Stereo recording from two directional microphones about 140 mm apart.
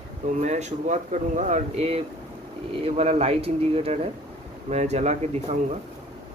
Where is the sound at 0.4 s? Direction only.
55° right (ahead or behind).